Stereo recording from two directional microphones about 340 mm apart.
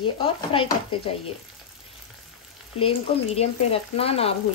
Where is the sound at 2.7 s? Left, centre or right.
Centre.